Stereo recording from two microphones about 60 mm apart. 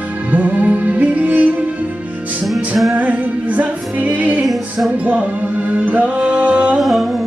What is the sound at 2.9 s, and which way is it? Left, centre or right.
Music, right.